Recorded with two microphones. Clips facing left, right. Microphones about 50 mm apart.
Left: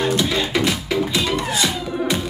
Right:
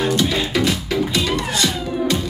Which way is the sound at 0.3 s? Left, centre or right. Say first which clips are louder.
Even; centre.